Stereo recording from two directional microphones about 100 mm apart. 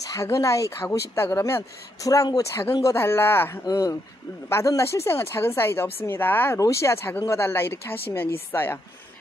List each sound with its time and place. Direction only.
0.0 s speech: 35° left (ahead or behind)
2.0 s speech: 35° left (ahead or behind)
3.6 s speech: 35° left (ahead or behind)